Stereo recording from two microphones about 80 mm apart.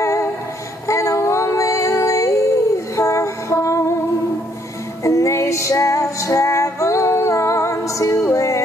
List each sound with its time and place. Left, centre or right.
0.0 s music: left
0.8 s female singing: left
3.0 s music: left
5.0 s music: left